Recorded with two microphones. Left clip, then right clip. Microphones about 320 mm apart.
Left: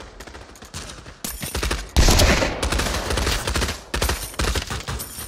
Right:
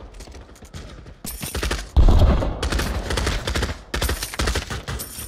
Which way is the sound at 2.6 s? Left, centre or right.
Centre.